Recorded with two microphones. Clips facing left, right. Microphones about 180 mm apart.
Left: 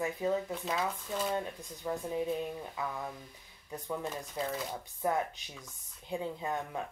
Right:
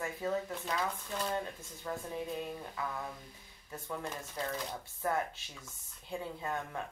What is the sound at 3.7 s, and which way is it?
Speech, 15° left (ahead or behind).